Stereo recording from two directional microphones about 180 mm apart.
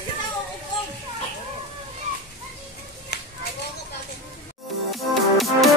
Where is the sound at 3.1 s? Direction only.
65° left (ahead or behind).